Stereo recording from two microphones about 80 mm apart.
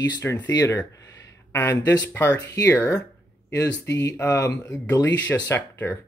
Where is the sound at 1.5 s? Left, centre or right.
Left.